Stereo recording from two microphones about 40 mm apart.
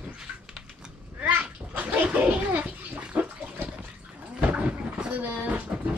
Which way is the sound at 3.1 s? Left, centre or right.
Right.